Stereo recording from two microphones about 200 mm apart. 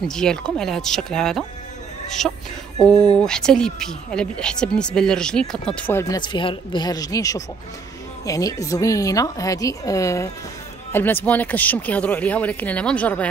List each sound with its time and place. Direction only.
0.1 s speech: 5° left (ahead or behind)